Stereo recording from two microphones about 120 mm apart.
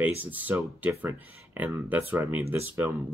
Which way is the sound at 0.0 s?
15° right (ahead or behind).